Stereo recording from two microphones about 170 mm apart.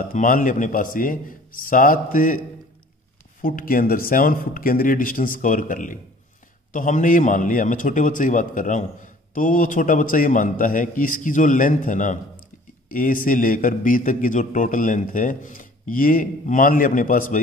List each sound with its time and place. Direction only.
0.1 s speech: 50° left (ahead or behind)
3.4 s speech: 55° left (ahead or behind)